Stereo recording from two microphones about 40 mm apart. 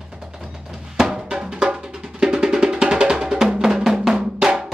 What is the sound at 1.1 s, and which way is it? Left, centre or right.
Music, centre.